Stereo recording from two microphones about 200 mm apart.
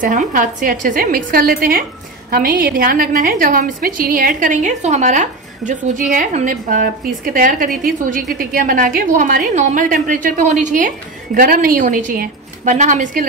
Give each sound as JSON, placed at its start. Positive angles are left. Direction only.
{"t": 0.0, "sound": "a woman's voice", "side_deg": -40}